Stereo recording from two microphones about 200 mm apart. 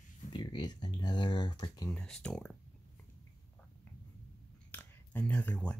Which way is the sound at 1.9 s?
5° left (ahead or behind).